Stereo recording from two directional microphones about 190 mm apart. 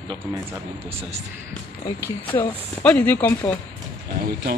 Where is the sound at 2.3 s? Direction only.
10° left (ahead or behind).